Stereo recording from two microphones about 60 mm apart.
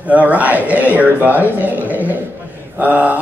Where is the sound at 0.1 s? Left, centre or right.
Right.